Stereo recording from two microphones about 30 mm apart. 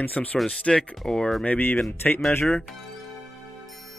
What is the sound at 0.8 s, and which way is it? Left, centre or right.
Speech, left.